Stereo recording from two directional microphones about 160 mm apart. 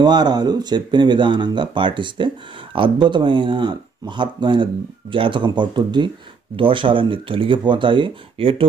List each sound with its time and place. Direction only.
0.0 s speech: 25° right (ahead or behind)